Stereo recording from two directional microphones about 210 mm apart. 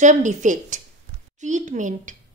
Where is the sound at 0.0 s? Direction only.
35° right (ahead or behind).